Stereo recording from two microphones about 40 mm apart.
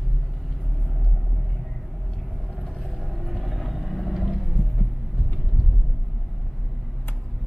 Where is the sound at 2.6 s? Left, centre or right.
Centre.